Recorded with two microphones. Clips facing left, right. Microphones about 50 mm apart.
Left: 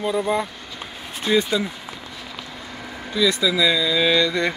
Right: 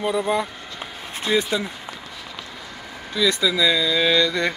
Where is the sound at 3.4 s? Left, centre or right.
Centre.